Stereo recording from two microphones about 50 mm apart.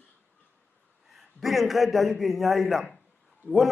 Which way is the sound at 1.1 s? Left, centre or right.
Centre.